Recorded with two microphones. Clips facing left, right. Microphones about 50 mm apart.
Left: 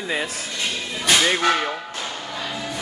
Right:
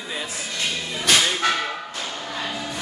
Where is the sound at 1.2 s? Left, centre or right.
Left.